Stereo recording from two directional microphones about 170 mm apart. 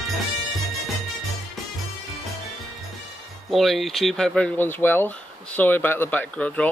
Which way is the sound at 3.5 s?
Centre (ahead or behind).